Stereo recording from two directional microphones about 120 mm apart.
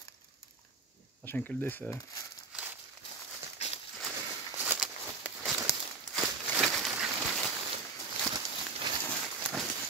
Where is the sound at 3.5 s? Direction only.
60° left (ahead or behind).